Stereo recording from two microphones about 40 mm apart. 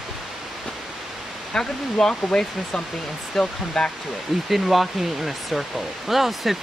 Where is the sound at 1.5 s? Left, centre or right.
Centre.